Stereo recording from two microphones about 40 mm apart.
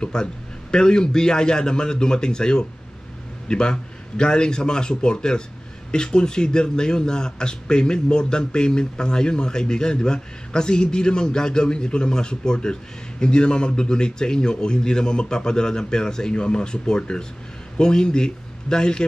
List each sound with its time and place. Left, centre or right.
0.0 s a man's voice: centre